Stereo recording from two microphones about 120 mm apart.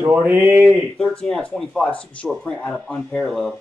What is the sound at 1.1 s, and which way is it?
Speech, 5° left (ahead or behind).